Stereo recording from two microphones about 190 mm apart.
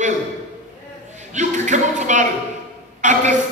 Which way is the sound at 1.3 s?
40° right (ahead or behind).